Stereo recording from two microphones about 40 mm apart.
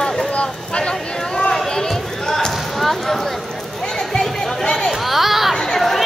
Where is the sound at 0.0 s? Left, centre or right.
Centre.